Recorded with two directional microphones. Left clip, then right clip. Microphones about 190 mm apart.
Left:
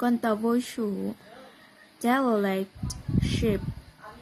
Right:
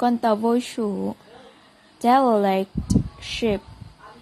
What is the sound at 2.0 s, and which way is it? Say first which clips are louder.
Speech: right 8 dB; 20° right (ahead or behind).